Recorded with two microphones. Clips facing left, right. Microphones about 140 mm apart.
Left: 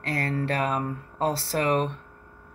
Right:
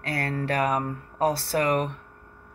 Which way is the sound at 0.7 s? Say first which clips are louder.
Right 1 dB; 10° right (ahead or behind).